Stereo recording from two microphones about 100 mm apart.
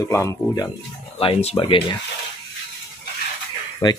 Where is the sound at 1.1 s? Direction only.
70° left (ahead or behind).